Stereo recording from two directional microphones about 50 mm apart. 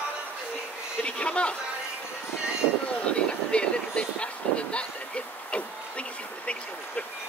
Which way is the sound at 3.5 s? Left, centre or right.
Centre.